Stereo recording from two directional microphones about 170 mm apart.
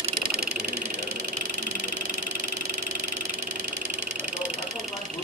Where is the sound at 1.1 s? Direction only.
45° right (ahead or behind).